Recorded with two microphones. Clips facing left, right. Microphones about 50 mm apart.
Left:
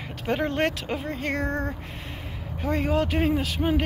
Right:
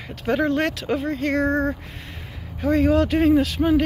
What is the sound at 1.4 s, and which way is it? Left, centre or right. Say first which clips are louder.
Speech: right 7 dB; right.